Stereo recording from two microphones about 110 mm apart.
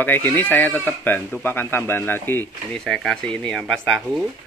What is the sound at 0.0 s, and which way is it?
Speech, 15° left (ahead or behind).